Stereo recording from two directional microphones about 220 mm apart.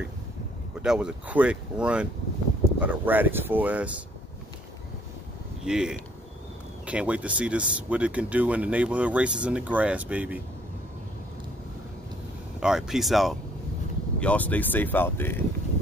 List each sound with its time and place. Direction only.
0.8 s speech: 5° right (ahead or behind)
5.7 s speech: 5° right (ahead or behind)
12.5 s speech: centre (ahead or behind)